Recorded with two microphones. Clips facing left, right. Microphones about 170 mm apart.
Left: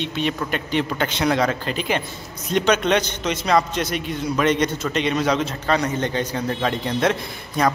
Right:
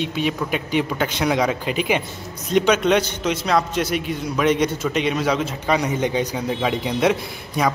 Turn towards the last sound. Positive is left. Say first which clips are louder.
# left 1 dB
turn(degrees=-5)  # may be behind; listen again after turning